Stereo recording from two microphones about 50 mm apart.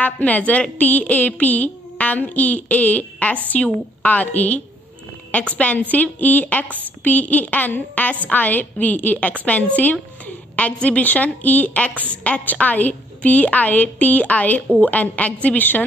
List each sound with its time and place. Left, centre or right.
0.0 s a woman's voice: left
5.6 s a woman's voice: left